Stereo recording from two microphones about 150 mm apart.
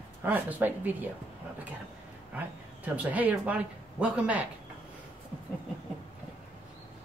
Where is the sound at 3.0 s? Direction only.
10° right (ahead or behind).